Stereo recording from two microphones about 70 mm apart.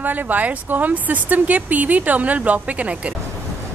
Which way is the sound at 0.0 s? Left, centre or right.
Right.